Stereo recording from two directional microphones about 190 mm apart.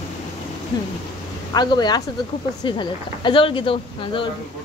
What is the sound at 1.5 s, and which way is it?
Speech, 20° left (ahead or behind).